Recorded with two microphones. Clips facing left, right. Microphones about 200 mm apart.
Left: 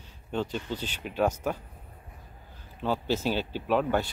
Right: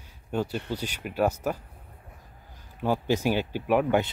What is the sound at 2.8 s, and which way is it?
Speech, 15° right (ahead or behind).